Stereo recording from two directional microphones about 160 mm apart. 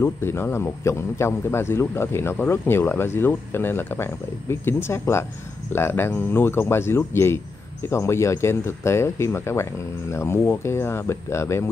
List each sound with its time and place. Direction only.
0.0 s speech: 15° left (ahead or behind)